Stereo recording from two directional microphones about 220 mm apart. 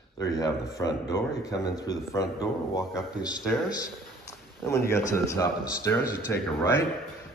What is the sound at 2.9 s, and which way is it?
Speech, centre (ahead or behind).